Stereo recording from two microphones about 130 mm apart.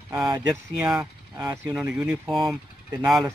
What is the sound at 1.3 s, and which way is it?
Speech, 25° right (ahead or behind).